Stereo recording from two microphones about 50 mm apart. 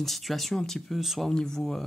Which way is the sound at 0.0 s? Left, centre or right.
Centre.